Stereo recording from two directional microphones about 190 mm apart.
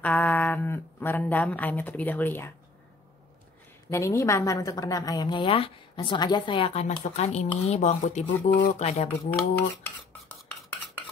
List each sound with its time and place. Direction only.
0.0 s speech: 10° left (ahead or behind)
3.9 s a woman's voice: 15° left (ahead or behind); by 9.1 s 35° left (ahead or behind)
9.6 s cutlery: 10° left (ahead or behind)